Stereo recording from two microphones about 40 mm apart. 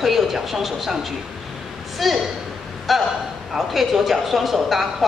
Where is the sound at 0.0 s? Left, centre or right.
Centre.